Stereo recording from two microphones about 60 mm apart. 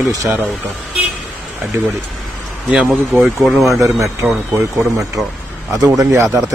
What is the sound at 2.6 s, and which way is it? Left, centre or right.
Speech, centre.